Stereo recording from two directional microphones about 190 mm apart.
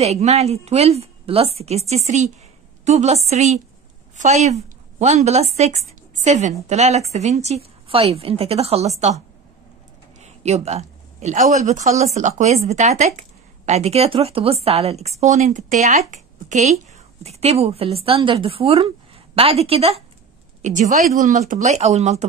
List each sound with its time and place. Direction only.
0.0 s a woman's voice: 35° right (ahead or behind)
10.2 s a sound: 35° right (ahead or behind)
11.5 s speech: 35° right (ahead or behind)